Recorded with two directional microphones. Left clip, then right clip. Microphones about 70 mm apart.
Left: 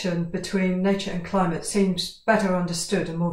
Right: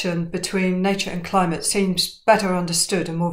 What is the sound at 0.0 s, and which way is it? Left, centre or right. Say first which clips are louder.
Speech: right 3 dB; right.